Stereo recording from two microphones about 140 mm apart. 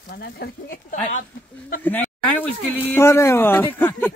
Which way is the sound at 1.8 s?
10° left (ahead or behind).